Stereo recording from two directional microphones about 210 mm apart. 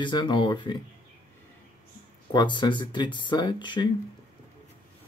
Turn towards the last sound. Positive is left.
turn(degrees=20)  # may be behind; listen again after turning